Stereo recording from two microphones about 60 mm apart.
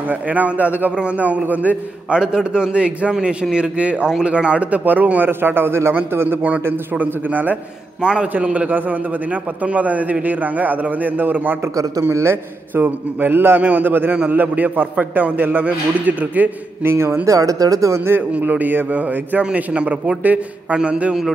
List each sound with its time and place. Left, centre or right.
0.1 s a man's voice: right
2.1 s a man's voice: centre
5.4 s a man's voice: right
8.0 s a man's voice: centre; by 11.5 s right
11.7 s speech: right
12.0 s speech: right
12.7 s a man's voice: right
16.8 s speech: right
17.3 s speech: right
18.4 s a man's voice: right; by 21.3 s centre